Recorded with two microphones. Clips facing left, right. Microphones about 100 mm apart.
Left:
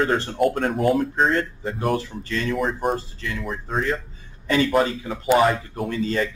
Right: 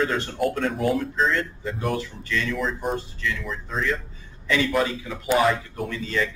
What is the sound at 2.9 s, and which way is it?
Speech, 40° left (ahead or behind).